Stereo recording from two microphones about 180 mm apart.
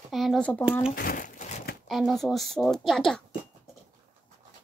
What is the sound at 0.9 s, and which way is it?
Crumpling, 55° left (ahead or behind).